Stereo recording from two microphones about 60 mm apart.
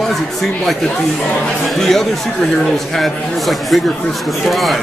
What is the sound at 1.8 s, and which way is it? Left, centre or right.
A man's voice, centre.